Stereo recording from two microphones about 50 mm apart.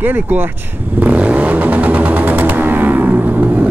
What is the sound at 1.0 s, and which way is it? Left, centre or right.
Vehicle, right.